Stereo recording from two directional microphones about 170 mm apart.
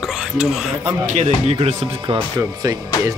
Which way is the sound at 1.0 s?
40° right (ahead or behind).